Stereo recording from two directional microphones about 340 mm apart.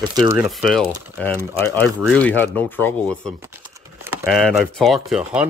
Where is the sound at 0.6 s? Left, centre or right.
Centre.